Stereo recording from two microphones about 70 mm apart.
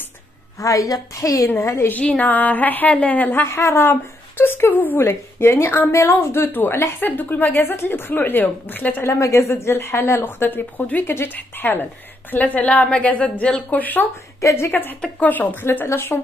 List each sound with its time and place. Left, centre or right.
0.6 s a woman's voice: left
1.9 s a woman's voice: centre
9.0 s a woman's voice: left
10.2 s speech: left
14.4 s a woman's voice: left
14.7 s a woman's voice: left